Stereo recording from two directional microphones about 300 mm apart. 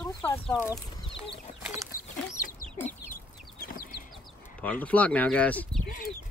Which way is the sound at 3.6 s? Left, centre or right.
Left.